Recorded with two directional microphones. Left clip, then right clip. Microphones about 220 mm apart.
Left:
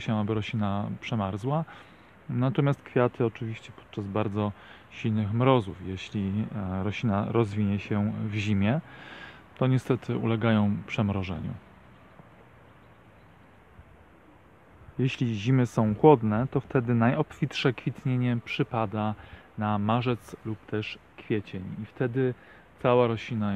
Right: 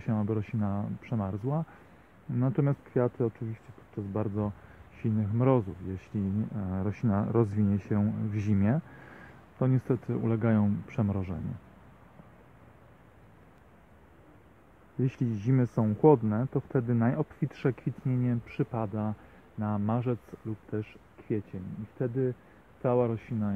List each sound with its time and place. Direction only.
0.0 s speech: 10° left (ahead or behind)
15.0 s speech: 5° left (ahead or behind)
15.6 s speech: 20° left (ahead or behind)
21.3 s speech: 20° left (ahead or behind)